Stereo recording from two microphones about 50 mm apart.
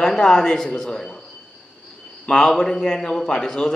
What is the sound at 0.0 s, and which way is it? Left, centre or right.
A man's voice, centre.